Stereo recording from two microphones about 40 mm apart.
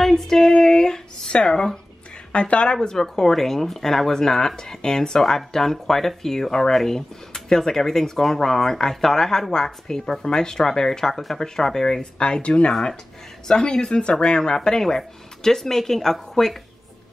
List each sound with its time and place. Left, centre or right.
0.0 s a sound: centre
1.5 s speech: centre
2.3 s speech: left; by 16.5 s centre